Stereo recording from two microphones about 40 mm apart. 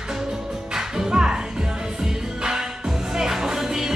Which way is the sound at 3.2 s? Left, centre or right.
Centre.